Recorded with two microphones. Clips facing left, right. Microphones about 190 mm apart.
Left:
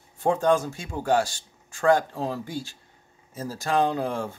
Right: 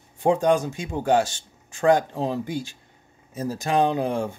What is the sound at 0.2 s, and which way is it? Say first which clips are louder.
Speech: right 2 dB; 15° right (ahead or behind).